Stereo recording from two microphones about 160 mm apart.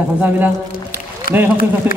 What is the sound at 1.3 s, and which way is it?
Speech, 70° left (ahead or behind).